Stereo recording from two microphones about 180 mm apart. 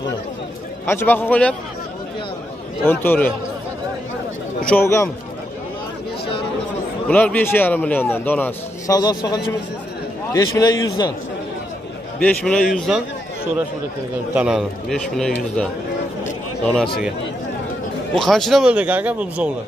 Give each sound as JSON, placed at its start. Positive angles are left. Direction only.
{"t": 0.8, "sound": "a man's voice", "side_deg": 10}
{"t": 2.8, "sound": "a man's voice", "side_deg": 10}
{"t": 4.6, "sound": "a man's voice", "side_deg": 10}
{"t": 7.1, "sound": "a man's voice", "side_deg": 10}
{"t": 12.2, "sound": "a man's voice", "side_deg": 5}
{"t": 14.3, "sound": "a man's voice", "side_deg": -5}
{"t": 18.1, "sound": "a man's voice", "side_deg": 0}